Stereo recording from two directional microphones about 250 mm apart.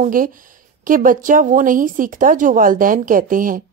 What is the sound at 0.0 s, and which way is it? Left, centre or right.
A woman's voice, right.